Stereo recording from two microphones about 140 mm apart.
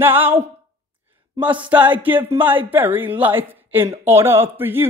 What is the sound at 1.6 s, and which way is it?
Speech, 10° right (ahead or behind).